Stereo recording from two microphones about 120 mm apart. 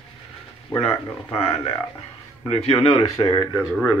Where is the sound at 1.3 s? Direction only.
50° left (ahead or behind).